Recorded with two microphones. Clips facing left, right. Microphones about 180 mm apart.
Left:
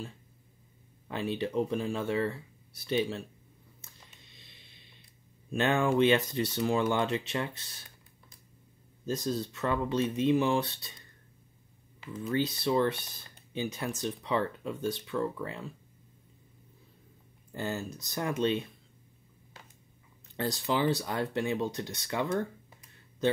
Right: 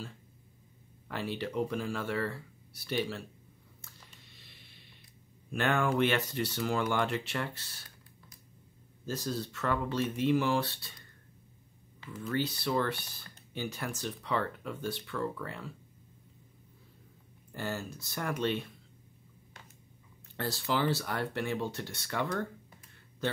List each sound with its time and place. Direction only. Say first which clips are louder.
1.0 s speech: left 3 dB; 20° left (ahead or behind)
3.8 s a sound: right 3 dB; 20° left (ahead or behind)
5.5 s speech: left 3 dB; 20° left (ahead or behind)
9.0 s speech: left 4 dB; 20° left (ahead or behind)
12.1 s speech: left 3 dB; 20° left (ahead or behind)
17.5 s speech: left 2 dB; 20° left (ahead or behind)
20.3 s speech: left 2 dB; 20° left (ahead or behind)